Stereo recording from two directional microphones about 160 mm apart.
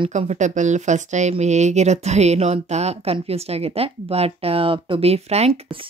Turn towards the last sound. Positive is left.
turn(degrees=-40)  # may be behind; listen again after turning